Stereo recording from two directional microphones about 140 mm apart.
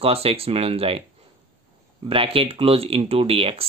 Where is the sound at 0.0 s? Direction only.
45° right (ahead or behind).